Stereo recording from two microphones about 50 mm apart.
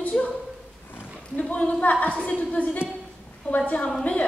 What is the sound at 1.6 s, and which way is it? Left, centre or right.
A woman's voice, left.